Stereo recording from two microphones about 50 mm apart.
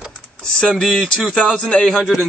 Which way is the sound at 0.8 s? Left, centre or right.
Centre.